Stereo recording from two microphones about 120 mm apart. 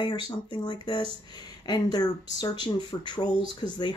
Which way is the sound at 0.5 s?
40° left (ahead or behind).